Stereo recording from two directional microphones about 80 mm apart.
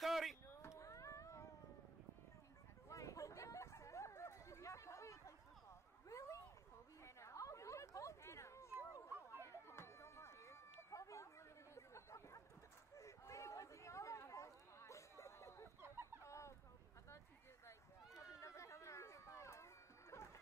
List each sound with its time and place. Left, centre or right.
0.0 s a sound: centre
0.6 s cat: left
2.9 s a sound: left
15.8 s chicken: right
16.2 s fowl: left
17.6 s run: left